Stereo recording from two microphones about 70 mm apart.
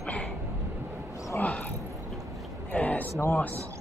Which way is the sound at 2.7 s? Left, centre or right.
Left.